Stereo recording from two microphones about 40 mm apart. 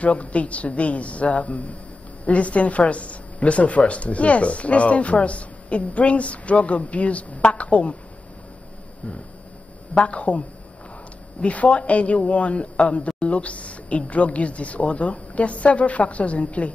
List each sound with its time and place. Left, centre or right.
0.0 s a woman's voice: left
9.9 s a woman's voice: left
11.4 s a woman's voice: left